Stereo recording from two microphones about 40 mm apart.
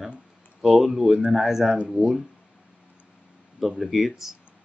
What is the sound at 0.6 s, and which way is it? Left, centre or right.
A man's voice, centre.